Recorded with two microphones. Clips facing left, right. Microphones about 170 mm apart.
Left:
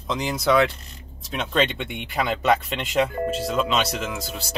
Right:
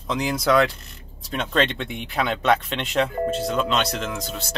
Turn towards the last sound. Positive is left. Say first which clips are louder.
# right 1 dB
turn(degrees=5)  # may be behind; listen again after turning